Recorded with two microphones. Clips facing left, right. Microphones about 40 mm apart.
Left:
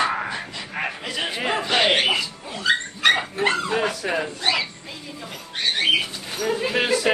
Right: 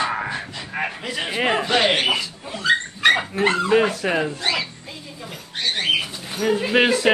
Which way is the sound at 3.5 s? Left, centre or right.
Right.